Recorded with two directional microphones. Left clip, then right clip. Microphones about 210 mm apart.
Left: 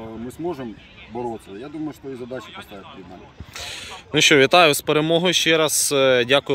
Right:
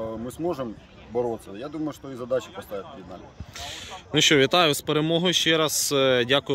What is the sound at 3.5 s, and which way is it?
Speech, 5° right (ahead or behind).